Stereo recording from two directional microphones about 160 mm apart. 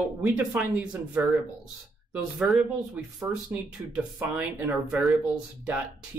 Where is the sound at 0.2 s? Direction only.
Centre (ahead or behind).